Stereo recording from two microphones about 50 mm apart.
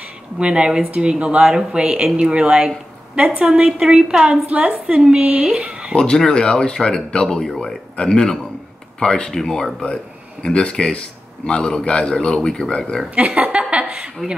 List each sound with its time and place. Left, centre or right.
0.4 s a woman's voice: right
4.5 s speech: right
4.8 s speech: centre
5.9 s speech: centre
10.4 s a man's voice: centre
13.1 s speech: right